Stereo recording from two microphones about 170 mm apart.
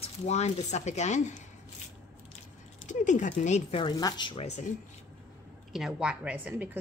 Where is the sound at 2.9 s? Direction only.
45° left (ahead or behind).